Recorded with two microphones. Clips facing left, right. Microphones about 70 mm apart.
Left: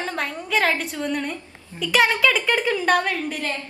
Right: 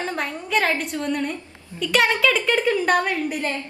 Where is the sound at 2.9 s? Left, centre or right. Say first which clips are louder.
Right 1 dB; centre.